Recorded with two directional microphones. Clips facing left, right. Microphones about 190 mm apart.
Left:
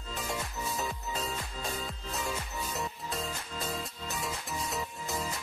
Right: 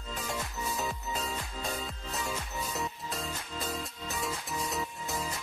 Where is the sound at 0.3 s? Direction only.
Centre (ahead or behind).